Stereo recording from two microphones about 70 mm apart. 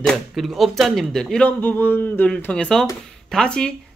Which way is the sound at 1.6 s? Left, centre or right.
Left.